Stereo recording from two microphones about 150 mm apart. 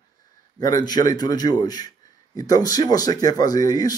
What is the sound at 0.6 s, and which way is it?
Speech, 25° left (ahead or behind).